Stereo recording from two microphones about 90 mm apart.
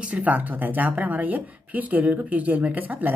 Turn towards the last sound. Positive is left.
turn(degrees=-20)  # may be behind; listen again after turning